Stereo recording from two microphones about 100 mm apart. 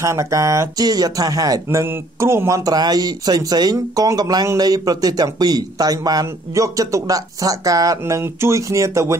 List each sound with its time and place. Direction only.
0.0 s speech: 30° right (ahead or behind)
8.0 s speech: 25° right (ahead or behind)